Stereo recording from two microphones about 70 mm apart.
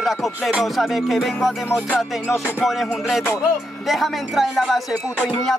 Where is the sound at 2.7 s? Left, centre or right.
Centre.